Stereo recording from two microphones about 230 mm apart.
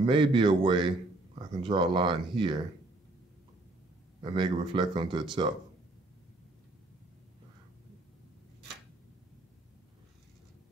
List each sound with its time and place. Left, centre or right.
0.0 s speech: right
4.2 s speech: right